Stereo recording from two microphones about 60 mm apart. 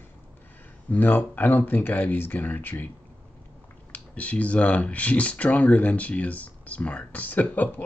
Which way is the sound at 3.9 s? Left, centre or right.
Left.